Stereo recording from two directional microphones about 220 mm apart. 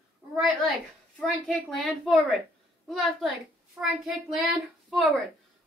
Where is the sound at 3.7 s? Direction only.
Centre (ahead or behind).